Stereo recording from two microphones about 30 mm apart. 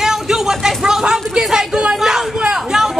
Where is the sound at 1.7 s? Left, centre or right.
Right.